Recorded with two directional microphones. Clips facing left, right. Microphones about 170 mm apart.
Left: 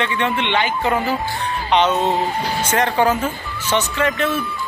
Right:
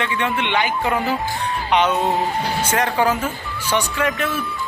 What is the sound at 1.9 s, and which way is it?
Speech, 25° left (ahead or behind).